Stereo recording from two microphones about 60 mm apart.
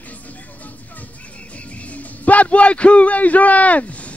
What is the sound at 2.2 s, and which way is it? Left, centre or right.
A man's voice, left.